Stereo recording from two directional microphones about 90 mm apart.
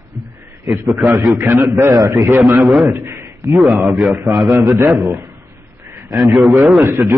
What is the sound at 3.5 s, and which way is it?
A man's voice, centre (ahead or behind).